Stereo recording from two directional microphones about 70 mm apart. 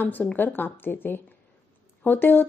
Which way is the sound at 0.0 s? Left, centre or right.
Left.